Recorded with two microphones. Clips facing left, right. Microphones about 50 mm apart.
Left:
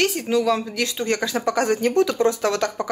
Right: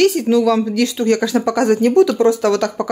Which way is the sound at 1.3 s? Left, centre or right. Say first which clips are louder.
Right 6 dB; right.